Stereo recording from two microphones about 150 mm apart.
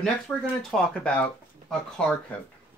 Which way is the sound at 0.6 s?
5° left (ahead or behind).